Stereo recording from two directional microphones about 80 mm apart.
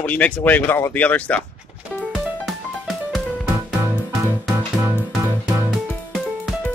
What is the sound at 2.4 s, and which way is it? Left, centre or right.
Music, centre.